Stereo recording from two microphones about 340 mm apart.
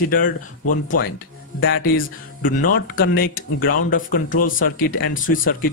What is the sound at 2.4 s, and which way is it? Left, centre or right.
Speech, left.